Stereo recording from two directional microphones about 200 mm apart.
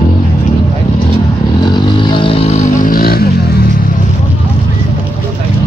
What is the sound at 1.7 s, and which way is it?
Vehicle, 25° left (ahead or behind).